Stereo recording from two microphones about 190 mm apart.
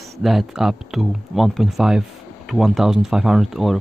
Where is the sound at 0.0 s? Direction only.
Centre (ahead or behind).